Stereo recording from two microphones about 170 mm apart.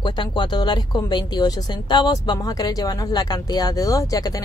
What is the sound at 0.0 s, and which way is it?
Speech, 25° left (ahead or behind).